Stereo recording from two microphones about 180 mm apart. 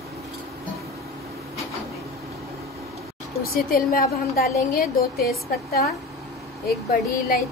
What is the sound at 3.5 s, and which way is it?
A woman's voice, 55° left (ahead or behind).